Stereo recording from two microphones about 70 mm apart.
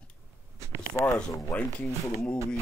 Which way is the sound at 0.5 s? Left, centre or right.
Right.